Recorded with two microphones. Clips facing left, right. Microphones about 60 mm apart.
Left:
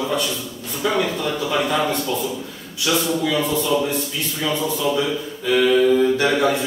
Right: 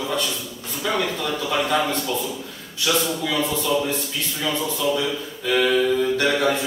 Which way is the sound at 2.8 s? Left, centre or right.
Centre.